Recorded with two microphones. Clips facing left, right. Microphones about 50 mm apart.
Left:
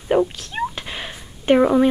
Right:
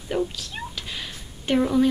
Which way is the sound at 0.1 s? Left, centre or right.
Left.